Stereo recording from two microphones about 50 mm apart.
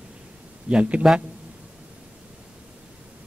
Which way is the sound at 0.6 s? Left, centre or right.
Right.